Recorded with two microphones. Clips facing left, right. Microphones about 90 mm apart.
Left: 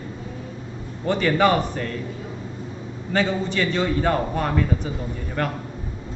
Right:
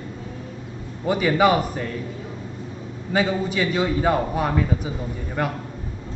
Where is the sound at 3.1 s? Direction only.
10° right (ahead or behind).